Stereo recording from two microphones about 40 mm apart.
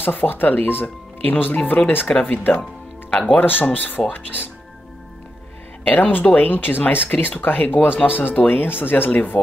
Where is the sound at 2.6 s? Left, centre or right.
Left.